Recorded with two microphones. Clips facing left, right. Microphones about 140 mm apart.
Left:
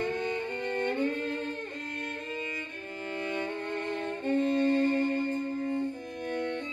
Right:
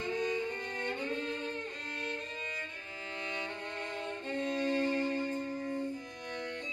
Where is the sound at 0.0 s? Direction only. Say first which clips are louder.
Left 3 dB; 60° left (ahead or behind).